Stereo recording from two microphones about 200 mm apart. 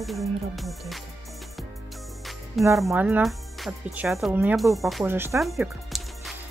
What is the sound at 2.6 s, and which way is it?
Speech, centre (ahead or behind).